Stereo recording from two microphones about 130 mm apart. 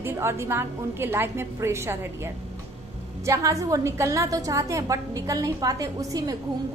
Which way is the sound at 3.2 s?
25° right (ahead or behind).